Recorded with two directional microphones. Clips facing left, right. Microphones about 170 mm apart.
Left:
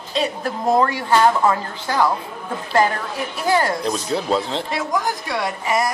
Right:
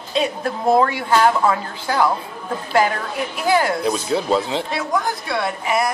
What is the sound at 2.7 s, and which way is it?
A woman's voice, 10° right (ahead or behind).